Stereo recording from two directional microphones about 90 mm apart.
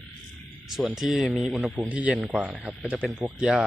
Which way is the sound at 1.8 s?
15° right (ahead or behind).